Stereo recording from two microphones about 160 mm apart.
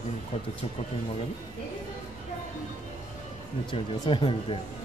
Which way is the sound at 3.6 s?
30° left (ahead or behind).